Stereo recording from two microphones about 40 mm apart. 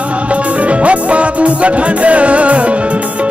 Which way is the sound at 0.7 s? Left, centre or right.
Right.